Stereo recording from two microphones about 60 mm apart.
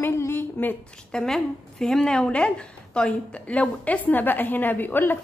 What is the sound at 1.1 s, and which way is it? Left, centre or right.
A woman's voice, centre.